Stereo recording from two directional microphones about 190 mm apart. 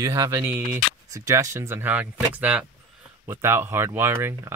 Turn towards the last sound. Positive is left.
turn(degrees=-15)  # may be behind; listen again after turning